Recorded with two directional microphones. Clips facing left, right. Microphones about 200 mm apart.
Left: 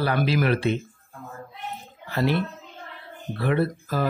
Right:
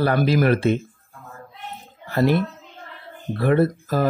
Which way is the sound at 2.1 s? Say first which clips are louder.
Right 5 dB; 50° right (ahead or behind).